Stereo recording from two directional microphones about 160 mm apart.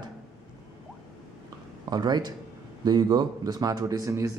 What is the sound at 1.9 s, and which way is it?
A man's voice, 25° right (ahead or behind).